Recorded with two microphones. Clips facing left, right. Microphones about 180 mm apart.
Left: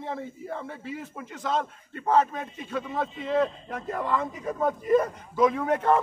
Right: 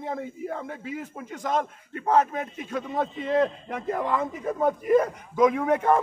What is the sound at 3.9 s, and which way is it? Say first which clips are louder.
A man's voice: right 2 dB; 15° right (ahead or behind).